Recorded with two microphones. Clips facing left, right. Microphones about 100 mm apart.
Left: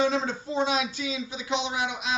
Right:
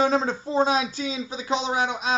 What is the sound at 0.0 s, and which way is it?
Speech, 40° right (ahead or behind).